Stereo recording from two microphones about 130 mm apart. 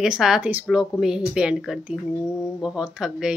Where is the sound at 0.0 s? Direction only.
5° right (ahead or behind).